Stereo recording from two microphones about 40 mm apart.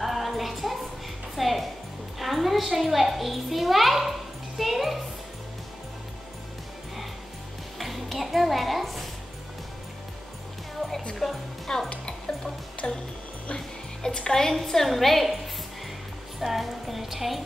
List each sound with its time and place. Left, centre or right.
0.0 s music: centre
2.1 s a child's voice: centre
4.6 s music: centre
7.8 s a sound: centre
11.2 s a woman's voice: centre
12.8 s music: left
14.0 s a woman's voice: centre
16.3 s music: centre